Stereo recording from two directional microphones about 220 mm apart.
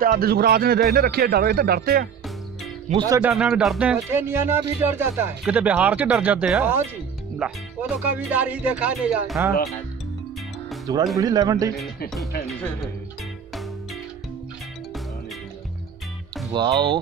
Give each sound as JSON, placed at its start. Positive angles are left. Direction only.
{"t": 0.0, "sound": "a man's voice", "side_deg": -45}
{"t": 2.9, "sound": "speech", "side_deg": -20}
{"t": 3.2, "sound": "music", "side_deg": -5}
{"t": 7.3, "sound": "speech", "side_deg": -5}
{"t": 11.1, "sound": "music", "side_deg": -15}
{"t": 16.5, "sound": "speech", "side_deg": -20}